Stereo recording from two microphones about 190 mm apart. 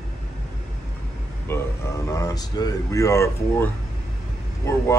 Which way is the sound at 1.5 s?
10° left (ahead or behind).